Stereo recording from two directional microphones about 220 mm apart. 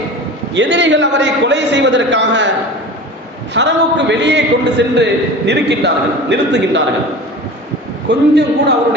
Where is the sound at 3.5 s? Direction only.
55° right (ahead or behind).